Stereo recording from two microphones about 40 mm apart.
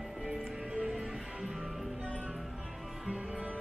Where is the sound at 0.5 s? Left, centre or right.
Centre.